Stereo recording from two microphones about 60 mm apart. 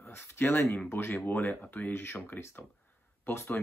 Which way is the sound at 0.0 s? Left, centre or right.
Left.